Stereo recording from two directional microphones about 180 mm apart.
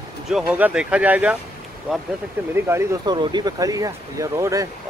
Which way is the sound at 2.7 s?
20° right (ahead or behind).